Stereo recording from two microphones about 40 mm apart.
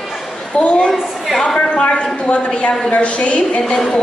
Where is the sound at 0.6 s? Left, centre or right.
Left.